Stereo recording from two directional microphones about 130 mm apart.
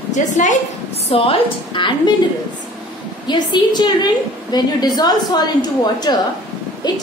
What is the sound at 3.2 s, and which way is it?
A woman's voice, 35° left (ahead or behind).